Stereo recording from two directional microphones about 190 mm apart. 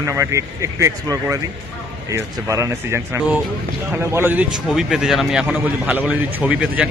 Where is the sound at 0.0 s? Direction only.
15° right (ahead or behind).